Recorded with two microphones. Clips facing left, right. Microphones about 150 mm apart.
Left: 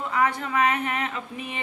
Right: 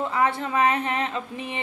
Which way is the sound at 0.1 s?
25° right (ahead or behind).